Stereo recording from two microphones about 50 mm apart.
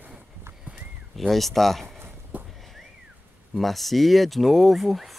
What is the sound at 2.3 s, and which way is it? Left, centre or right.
Horse, right.